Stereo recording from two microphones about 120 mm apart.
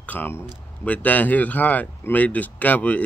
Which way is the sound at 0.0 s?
15° left (ahead or behind).